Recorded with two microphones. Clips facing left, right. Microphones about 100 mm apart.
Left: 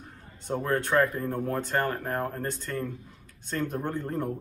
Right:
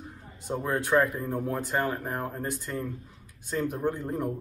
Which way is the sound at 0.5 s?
15° right (ahead or behind).